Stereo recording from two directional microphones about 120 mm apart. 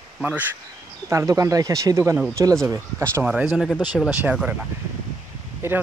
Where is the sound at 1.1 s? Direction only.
30° right (ahead or behind).